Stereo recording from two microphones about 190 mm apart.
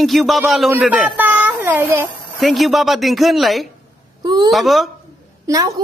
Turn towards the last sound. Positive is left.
turn(degrees=-20)  # may be behind; listen again after turning